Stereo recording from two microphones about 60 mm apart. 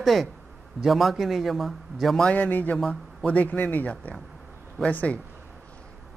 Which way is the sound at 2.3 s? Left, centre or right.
Left.